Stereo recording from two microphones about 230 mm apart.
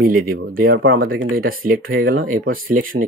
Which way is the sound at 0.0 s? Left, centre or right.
Right.